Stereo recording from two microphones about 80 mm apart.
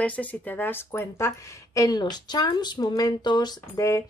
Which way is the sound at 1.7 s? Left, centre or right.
Left.